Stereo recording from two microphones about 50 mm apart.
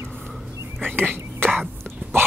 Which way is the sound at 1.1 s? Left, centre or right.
Right.